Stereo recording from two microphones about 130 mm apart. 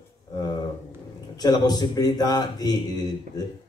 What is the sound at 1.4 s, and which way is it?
A man's voice, 30° left (ahead or behind).